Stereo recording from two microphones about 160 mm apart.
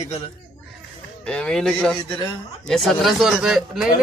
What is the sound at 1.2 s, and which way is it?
Speech, 5° left (ahead or behind).